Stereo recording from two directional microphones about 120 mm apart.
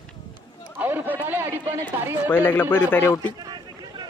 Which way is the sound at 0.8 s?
15° right (ahead or behind).